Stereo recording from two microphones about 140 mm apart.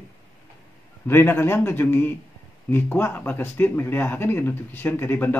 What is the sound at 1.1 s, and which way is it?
Speech, 15° left (ahead or behind).